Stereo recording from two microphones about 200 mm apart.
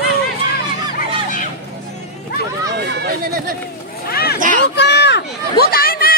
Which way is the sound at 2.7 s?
55° right (ahead or behind).